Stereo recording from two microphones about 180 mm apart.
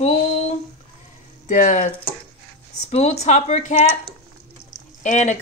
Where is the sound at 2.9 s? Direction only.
40° left (ahead or behind).